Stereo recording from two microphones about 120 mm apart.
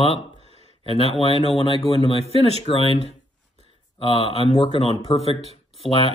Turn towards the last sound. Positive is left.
turn(degrees=50)  # may be behind; listen again after turning